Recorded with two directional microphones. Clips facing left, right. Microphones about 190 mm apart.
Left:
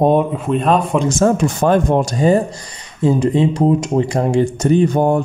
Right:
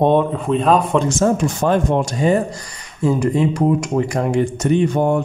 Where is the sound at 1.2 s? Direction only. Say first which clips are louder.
Left 2 dB; 50° left (ahead or behind).